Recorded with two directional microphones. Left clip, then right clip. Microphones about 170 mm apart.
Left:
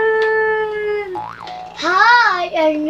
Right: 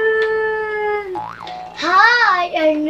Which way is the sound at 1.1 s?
Centre (ahead or behind).